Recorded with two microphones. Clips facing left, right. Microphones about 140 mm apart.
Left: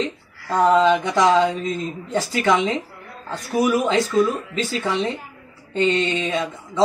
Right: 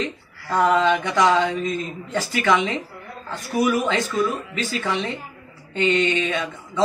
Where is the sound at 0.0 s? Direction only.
30° left (ahead or behind).